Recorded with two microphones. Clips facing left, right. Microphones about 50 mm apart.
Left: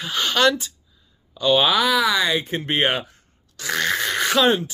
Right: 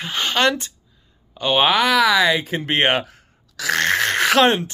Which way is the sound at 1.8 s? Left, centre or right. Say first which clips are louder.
Right 3 dB; right.